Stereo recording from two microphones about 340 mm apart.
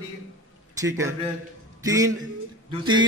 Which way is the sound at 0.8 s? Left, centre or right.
Centre.